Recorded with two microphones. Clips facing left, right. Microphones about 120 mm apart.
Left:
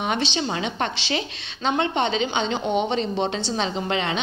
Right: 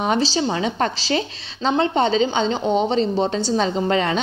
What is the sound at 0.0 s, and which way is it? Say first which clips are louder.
A woman's voice: right 5 dB; 35° right (ahead or behind).